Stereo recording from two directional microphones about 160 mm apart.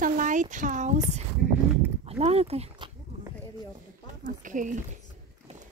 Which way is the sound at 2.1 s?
40° right (ahead or behind).